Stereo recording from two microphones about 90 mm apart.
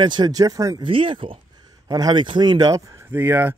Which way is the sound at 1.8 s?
50° right (ahead or behind).